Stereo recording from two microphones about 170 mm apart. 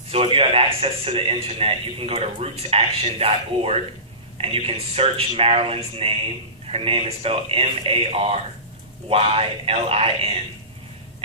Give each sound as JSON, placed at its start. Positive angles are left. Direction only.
{"t": 0.1, "sound": "a man's voice", "side_deg": -35}